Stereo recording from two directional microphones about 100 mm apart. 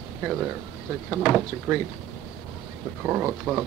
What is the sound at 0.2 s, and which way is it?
Speech, 15° right (ahead or behind).